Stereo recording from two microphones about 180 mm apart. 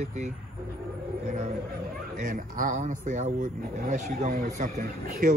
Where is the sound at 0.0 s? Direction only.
40° right (ahead or behind).